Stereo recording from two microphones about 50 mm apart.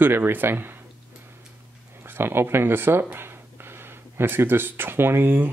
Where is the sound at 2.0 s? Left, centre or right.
Right.